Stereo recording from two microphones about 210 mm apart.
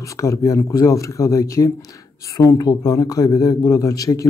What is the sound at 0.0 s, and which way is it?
Speech, 15° left (ahead or behind).